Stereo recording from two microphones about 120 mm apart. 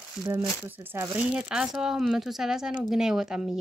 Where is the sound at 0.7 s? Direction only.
15° right (ahead or behind).